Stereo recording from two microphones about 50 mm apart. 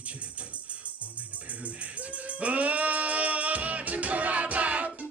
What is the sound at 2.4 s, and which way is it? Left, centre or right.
Music, right.